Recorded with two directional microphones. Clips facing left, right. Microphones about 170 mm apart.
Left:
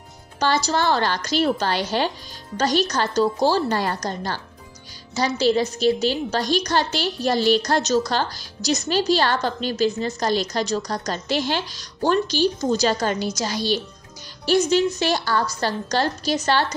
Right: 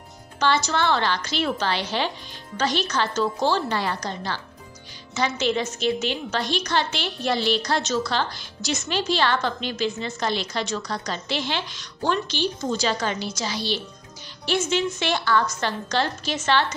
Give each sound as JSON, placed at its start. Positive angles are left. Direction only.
{"t": 0.4, "sound": "a woman's voice", "side_deg": 35}